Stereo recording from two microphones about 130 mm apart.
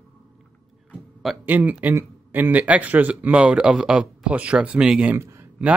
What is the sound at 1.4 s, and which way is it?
Speech, 15° right (ahead or behind).